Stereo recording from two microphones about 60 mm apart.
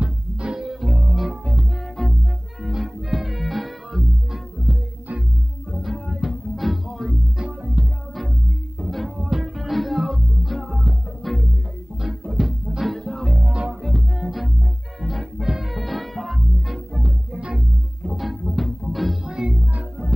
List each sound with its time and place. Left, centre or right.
0.0 s music: centre
2.0 s music: centre
5.8 s music: centre
7.8 s music: right
8.7 s music: centre
13.5 s music: centre
13.8 s music: centre
17.0 s music: centre
18.1 s music: centre